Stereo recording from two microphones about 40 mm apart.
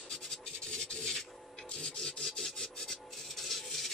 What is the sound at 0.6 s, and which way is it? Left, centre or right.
Rub, centre.